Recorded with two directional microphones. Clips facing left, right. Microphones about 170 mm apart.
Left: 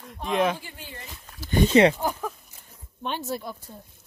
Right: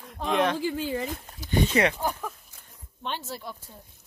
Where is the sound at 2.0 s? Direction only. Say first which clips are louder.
Left 2 dB; 10° left (ahead or behind).